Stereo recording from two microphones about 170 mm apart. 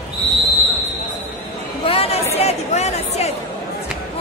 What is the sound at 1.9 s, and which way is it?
Chatter, 35° left (ahead or behind).